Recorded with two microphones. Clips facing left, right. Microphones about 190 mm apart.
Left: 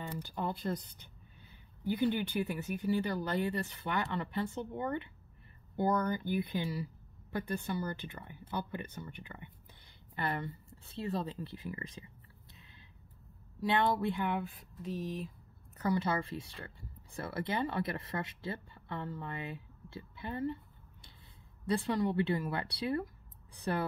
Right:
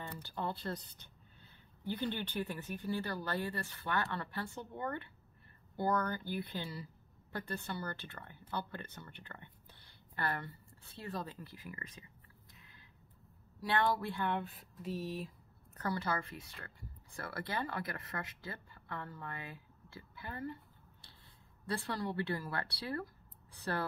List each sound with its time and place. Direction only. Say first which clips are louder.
0.2 s speech: left 2 dB; 15° left (ahead or behind)
12.5 s a sound: left 2 dB; 25° left (ahead or behind)
13.6 s speech: left 3 dB; 20° left (ahead or behind)
14.4 s speech: left 2 dB; centre (ahead or behind)
15.9 s speech: left 5 dB; 25° left (ahead or behind)
21.6 s speech: left 7 dB; 20° left (ahead or behind)